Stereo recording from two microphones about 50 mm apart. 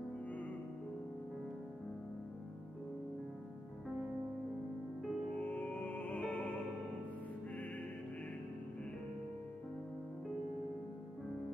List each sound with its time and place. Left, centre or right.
5.4 s music: left